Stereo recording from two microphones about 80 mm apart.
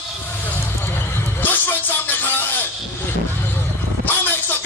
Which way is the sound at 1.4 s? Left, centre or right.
Left.